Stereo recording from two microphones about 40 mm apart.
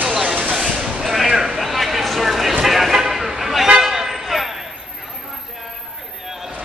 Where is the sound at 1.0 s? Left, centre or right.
Centre.